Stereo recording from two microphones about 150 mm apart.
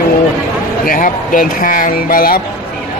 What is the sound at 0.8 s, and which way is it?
Speech, 65° left (ahead or behind).